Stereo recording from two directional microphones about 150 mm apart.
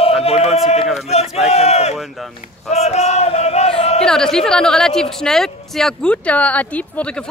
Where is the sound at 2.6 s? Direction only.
45° left (ahead or behind).